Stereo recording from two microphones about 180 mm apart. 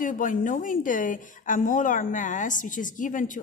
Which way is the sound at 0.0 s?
50° left (ahead or behind).